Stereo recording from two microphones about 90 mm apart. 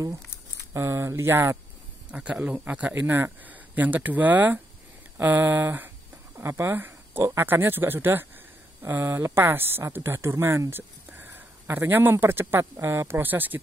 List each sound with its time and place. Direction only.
0.7 s speech: 30° right (ahead or behind)
2.0 s speech: 15° right (ahead or behind)